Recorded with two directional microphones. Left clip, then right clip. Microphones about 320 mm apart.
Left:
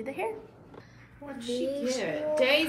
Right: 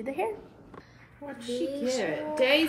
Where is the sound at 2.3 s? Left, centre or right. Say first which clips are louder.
Right 1 dB; right.